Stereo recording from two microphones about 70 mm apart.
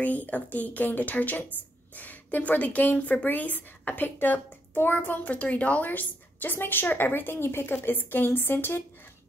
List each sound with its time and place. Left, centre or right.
0.0 s a woman's voice: left